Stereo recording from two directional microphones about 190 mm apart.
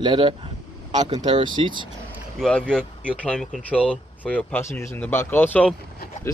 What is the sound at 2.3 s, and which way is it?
Speech, 5° left (ahead or behind).